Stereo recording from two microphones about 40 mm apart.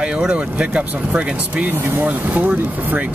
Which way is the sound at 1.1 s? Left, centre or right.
Right.